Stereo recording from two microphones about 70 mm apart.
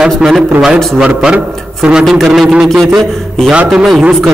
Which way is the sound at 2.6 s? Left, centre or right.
Centre.